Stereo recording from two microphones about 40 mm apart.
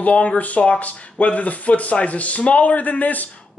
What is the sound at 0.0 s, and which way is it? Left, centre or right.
Speech, left.